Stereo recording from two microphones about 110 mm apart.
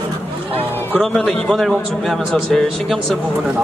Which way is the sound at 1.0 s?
5° left (ahead or behind).